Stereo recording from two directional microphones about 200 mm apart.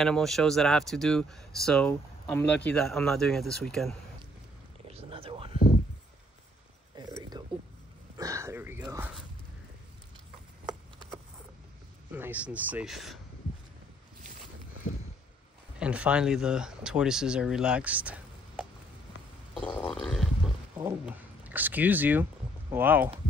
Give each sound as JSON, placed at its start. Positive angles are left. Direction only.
{"t": 0.0, "sound": "speech", "side_deg": 0}
{"t": 4.8, "sound": "a sound", "side_deg": -30}
{"t": 7.0, "sound": "a sound", "side_deg": -20}
{"t": 8.8, "sound": "zipper", "side_deg": -15}
{"t": 12.1, "sound": "speech", "side_deg": -10}
{"t": 15.8, "sound": "speech", "side_deg": -5}
{"t": 19.6, "sound": "speech", "side_deg": 10}
{"t": 21.0, "sound": "speech", "side_deg": -10}